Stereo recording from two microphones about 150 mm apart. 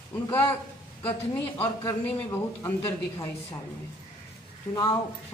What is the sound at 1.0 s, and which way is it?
A man's voice, 15° left (ahead or behind).